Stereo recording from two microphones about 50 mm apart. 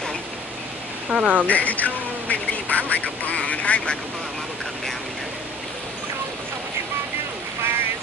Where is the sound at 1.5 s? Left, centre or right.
Left.